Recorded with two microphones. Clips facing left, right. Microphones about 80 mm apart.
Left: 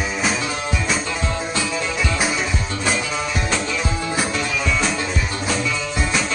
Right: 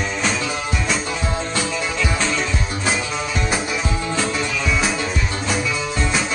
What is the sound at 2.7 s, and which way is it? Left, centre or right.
Music, right.